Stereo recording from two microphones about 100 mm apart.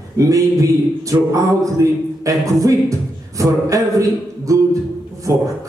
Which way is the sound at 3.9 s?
35° right (ahead or behind).